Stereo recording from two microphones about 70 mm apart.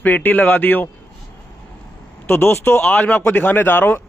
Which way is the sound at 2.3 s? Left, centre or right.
Left.